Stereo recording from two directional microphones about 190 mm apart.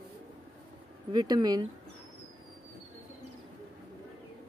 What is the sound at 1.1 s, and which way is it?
Speech, 20° right (ahead or behind).